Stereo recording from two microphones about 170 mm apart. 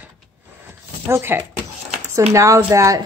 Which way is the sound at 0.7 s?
15° right (ahead or behind).